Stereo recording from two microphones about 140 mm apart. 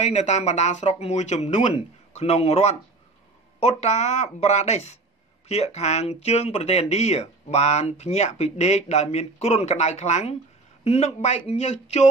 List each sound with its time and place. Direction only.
0.0 s speech: 55° left (ahead or behind)